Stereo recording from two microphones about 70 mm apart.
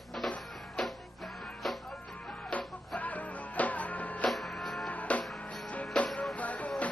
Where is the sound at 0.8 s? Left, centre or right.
Centre.